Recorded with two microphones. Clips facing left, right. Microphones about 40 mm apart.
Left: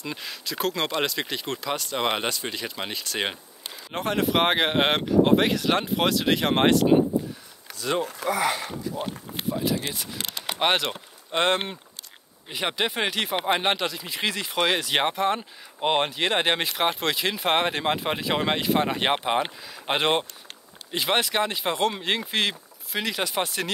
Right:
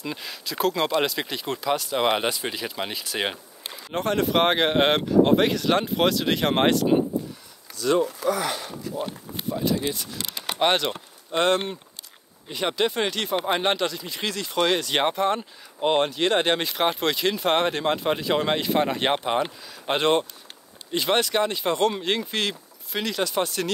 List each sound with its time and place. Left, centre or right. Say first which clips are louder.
0.0 s speech: right 1 dB; centre
8.0 s speech: right 4 dB; left
8.3 s speech: left 4 dB; left
8.5 s speech: even; left
10.6 s speech: right 2 dB; centre
11.3 s speech: right 2 dB; left
12.4 s speech: right 2 dB; centre
15.8 s speech: right 2 dB; left
16.7 s speech: right 1 dB; centre